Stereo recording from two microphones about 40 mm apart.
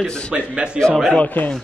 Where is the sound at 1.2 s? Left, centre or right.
Left.